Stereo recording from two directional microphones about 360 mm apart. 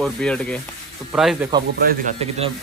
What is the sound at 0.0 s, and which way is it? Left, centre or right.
Speech, centre.